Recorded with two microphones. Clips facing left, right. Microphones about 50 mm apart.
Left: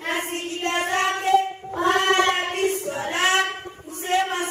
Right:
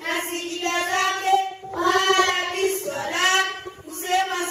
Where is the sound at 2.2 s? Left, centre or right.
Left.